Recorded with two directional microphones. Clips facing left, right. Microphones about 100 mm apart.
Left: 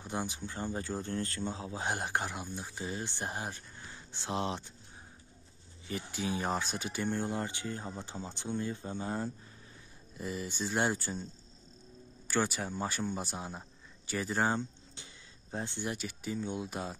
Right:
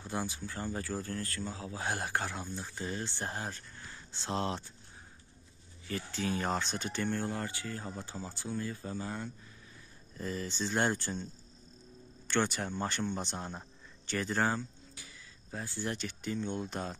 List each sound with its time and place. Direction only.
0.0 s speech: 20° left (ahead or behind)
5.9 s speech: 15° left (ahead or behind)
10.1 s speech: 10° left (ahead or behind)
12.3 s speech: 5° left (ahead or behind)
14.4 s a sound: 25° left (ahead or behind)
15.9 s speech: 10° left (ahead or behind)